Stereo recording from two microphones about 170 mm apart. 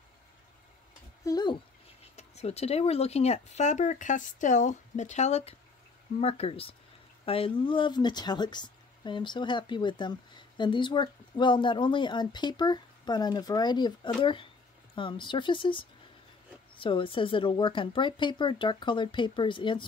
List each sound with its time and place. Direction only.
1.2 s speech: 25° left (ahead or behind)
2.1 s speech: 40° left (ahead or behind)